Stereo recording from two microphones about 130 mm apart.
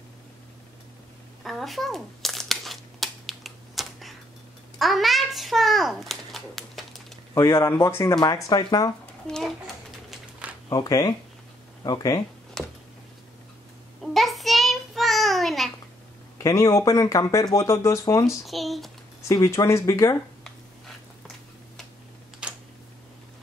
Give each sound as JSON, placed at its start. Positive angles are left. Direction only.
{"t": 1.4, "sound": "crumpling", "side_deg": 0}
{"t": 4.7, "sound": "a child's voice", "side_deg": 0}
{"t": 7.3, "sound": "speech", "side_deg": 20}
{"t": 10.7, "sound": "speech", "side_deg": 25}
{"t": 12.6, "sound": "a sound", "side_deg": 5}
{"t": 14.0, "sound": "child singing", "side_deg": 0}
{"t": 16.4, "sound": "speech", "side_deg": 25}
{"t": 18.4, "sound": "speech", "side_deg": 0}
{"t": 19.2, "sound": "speech", "side_deg": 25}
{"t": 22.4, "sound": "a sound", "side_deg": -5}